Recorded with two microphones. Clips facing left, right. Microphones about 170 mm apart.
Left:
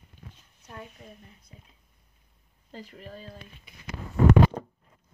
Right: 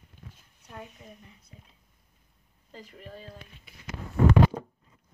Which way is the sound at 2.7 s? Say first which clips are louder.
Left 3 dB; 35° left (ahead or behind).